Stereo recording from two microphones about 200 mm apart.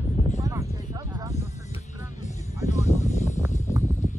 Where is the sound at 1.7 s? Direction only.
35° left (ahead or behind).